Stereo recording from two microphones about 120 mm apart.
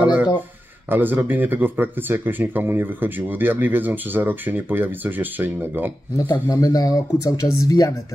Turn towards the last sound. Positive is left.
turn(degrees=30)  # may be behind; listen again after turning